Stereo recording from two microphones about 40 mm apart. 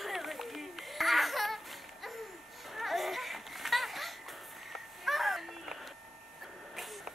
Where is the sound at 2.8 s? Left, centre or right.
Centre.